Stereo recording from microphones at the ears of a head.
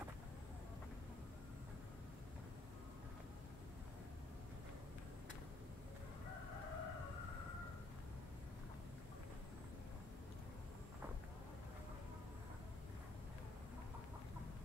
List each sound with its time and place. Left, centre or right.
6.2 s crowing: left